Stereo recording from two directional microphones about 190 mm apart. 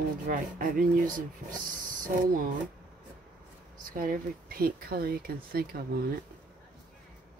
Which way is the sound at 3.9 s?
50° right (ahead or behind).